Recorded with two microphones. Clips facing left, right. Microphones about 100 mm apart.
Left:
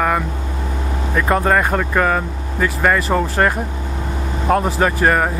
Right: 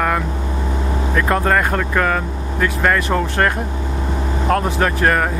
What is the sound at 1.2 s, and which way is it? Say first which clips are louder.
Speech: left 1 dB; 5° left (ahead or behind).